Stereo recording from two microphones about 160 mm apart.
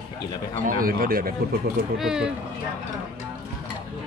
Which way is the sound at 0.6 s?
65° right (ahead or behind).